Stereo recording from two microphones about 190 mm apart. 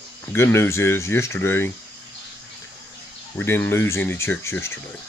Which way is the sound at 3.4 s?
10° left (ahead or behind).